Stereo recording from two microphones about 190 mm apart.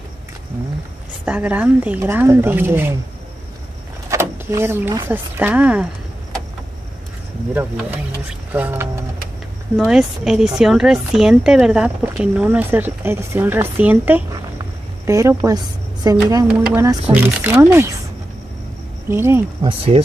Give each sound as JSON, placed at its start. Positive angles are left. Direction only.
{"t": 1.2, "sound": "a woman's voice", "side_deg": -10}
{"t": 4.1, "sound": "speech", "side_deg": -15}
{"t": 8.5, "sound": "a woman's voice", "side_deg": -10}
{"t": 19.0, "sound": "a woman's voice", "side_deg": -15}
{"t": 19.6, "sound": "speech", "side_deg": -30}